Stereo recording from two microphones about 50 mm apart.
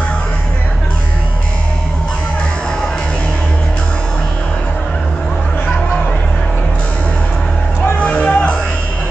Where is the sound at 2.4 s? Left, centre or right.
Centre.